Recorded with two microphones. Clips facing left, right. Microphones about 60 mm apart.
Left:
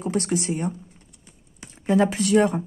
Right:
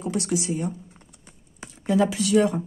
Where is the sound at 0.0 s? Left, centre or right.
Left.